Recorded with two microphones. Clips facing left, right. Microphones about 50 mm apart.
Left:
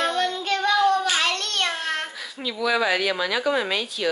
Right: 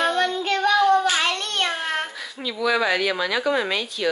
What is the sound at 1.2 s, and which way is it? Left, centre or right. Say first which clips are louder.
Babbling: right 1 dB; right.